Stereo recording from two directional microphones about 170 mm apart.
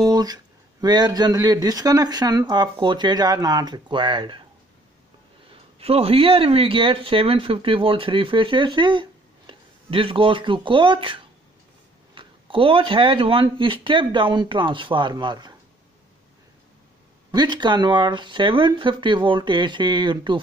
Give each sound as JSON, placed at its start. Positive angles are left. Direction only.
{"t": 0.0, "sound": "speech", "side_deg": -25}
{"t": 5.8, "sound": "speech", "side_deg": -35}
{"t": 12.2, "sound": "speech", "side_deg": -30}
{"t": 17.3, "sound": "speech", "side_deg": -25}